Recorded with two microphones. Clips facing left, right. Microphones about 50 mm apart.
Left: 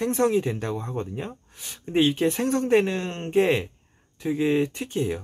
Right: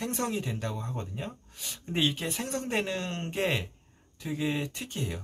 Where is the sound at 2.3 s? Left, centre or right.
Left.